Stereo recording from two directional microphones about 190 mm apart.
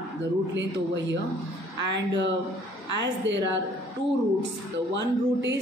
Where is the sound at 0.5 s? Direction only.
70° right (ahead or behind).